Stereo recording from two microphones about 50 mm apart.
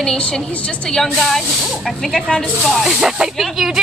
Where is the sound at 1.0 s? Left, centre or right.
Centre.